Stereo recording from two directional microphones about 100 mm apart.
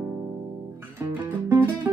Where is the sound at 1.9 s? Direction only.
25° right (ahead or behind).